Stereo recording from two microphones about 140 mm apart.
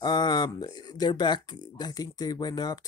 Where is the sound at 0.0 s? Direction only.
30° left (ahead or behind).